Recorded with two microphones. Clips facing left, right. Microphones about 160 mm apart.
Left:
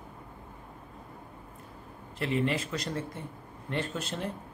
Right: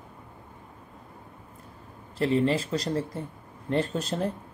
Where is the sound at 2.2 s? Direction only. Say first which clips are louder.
Right 5 dB; 35° right (ahead or behind).